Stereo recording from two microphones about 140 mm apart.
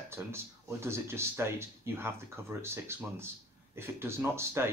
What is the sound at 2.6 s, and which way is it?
Speech, 15° right (ahead or behind).